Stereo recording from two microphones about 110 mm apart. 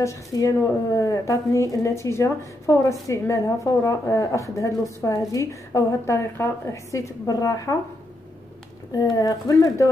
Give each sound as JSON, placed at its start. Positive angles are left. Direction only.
{"t": 0.0, "sound": "a woman's voice", "side_deg": 30}
{"t": 9.2, "sound": "a woman's voice", "side_deg": 30}